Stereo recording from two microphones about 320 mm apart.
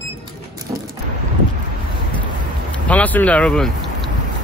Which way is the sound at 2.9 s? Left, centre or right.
Centre.